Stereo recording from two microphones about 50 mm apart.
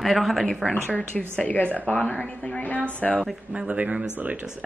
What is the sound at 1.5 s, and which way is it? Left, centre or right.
Speech, left.